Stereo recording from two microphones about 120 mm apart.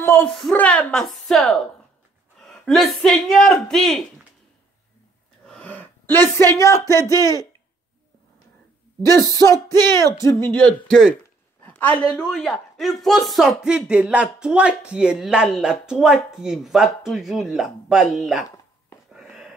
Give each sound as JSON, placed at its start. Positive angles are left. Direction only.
{"t": 0.0, "sound": "a woman's voice", "side_deg": 20}
{"t": 0.3, "sound": "a woman's voice", "side_deg": 5}
{"t": 5.5, "sound": "speech", "side_deg": 15}
{"t": 10.1, "sound": "speech", "side_deg": 20}
{"t": 10.9, "sound": "a woman's voice", "side_deg": 0}
{"t": 11.6, "sound": "a woman's voice", "side_deg": 15}
{"t": 19.1, "sound": "a sound", "side_deg": 0}